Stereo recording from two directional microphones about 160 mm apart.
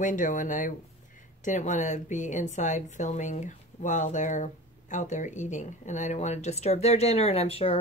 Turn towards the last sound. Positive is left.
turn(degrees=40)  # may be behind; listen again after turning